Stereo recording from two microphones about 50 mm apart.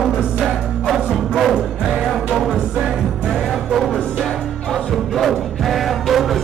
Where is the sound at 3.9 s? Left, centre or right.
Centre.